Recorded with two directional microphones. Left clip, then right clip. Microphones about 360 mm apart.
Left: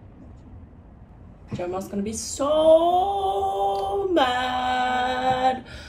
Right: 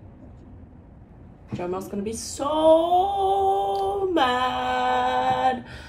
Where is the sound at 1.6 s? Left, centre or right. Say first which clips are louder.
Even; centre.